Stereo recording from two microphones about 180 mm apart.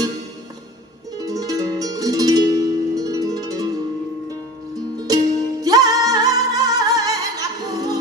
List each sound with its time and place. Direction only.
1.2 s music: 20° right (ahead or behind)
5.0 s music: 20° right (ahead or behind)